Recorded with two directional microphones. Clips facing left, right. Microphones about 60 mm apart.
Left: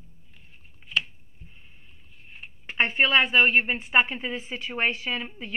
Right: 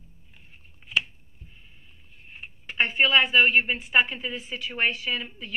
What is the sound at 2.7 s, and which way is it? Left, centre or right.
Speech, left.